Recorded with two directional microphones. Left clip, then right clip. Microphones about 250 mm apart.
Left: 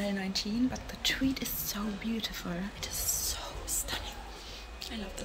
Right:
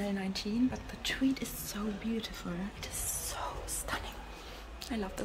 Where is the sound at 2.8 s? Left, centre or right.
Centre.